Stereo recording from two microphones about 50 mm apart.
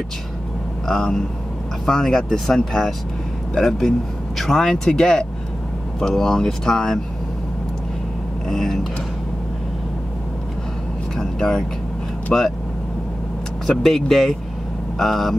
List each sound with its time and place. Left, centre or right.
0.8 s speech: centre
8.5 s speech: centre
11.1 s vehicle: centre
12.3 s speech: centre
13.7 s speech: centre